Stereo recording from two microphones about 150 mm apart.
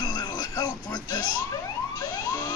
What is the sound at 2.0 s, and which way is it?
Emergency vehicle, 25° left (ahead or behind).